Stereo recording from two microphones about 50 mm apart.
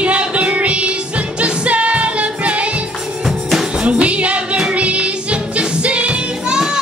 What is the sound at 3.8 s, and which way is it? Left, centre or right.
Music, right.